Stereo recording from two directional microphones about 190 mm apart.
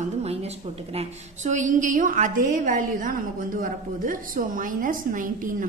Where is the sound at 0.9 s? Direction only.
40° right (ahead or behind).